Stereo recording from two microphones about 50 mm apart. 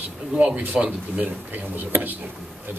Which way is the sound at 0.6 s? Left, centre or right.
Right.